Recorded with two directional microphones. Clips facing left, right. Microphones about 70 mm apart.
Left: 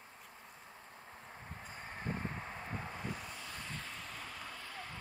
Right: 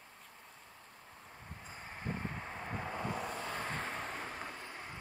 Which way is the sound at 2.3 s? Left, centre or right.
Centre.